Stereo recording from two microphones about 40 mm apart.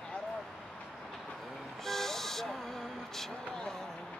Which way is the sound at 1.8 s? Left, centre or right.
Centre.